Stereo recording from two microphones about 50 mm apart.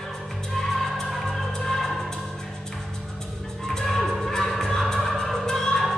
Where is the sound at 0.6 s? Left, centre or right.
Centre.